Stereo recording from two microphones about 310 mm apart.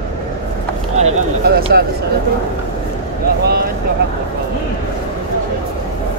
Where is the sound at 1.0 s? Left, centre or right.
Right.